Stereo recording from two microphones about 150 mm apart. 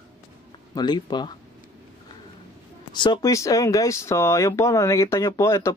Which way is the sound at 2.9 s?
30° left (ahead or behind).